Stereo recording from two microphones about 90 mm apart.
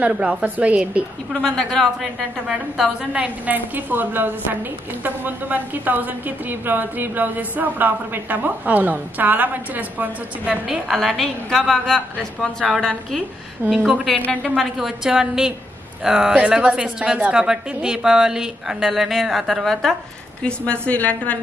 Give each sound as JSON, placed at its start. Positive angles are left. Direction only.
{"t": 0.0, "sound": "a woman's voice", "side_deg": -15}
{"t": 1.3, "sound": "a woman's voice", "side_deg": 5}
{"t": 3.1, "sound": "a woman's voice", "side_deg": -15}
{"t": 10.9, "sound": "a woman's voice", "side_deg": 0}
{"t": 14.1, "sound": "a woman's voice", "side_deg": 15}
{"t": 14.6, "sound": "a woman's voice", "side_deg": -5}
{"t": 20.4, "sound": "a woman's voice", "side_deg": 15}